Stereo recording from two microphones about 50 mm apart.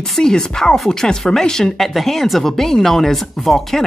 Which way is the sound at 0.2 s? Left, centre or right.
Centre.